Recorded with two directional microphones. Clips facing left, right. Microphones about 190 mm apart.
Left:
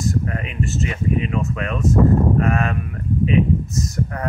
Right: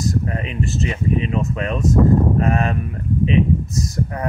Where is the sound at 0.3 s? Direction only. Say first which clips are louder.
Right 1 dB; 25° right (ahead or behind).